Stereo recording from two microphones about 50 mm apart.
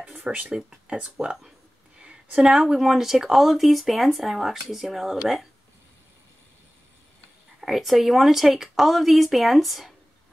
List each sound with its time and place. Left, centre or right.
0.2 s speech: right
0.6 s speech: centre
2.0 s a sound: right
2.4 s speech: centre
7.6 s speech: centre